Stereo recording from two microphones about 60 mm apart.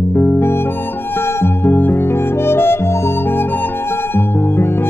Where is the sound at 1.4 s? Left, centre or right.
Left.